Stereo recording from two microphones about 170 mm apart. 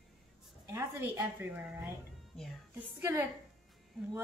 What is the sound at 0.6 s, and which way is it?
A woman's voice, 15° right (ahead or behind).